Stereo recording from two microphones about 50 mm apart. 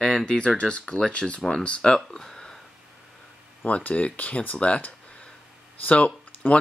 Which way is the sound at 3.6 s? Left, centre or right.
Left.